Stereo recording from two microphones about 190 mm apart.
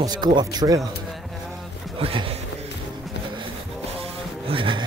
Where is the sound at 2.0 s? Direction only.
30° right (ahead or behind).